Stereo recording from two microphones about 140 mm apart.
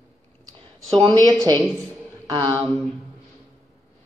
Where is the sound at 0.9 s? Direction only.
35° right (ahead or behind).